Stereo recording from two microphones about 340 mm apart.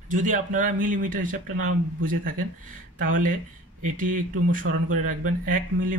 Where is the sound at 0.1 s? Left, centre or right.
Right.